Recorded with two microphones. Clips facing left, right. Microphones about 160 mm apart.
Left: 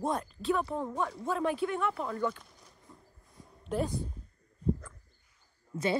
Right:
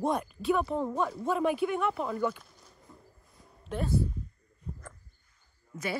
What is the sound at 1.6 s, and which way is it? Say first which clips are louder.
Speech: right 2 dB; 15° right (ahead or behind).